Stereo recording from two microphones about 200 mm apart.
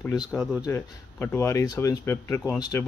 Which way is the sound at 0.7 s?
10° left (ahead or behind).